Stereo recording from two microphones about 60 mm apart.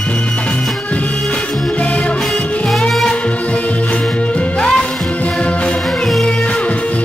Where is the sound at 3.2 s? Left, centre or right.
Left.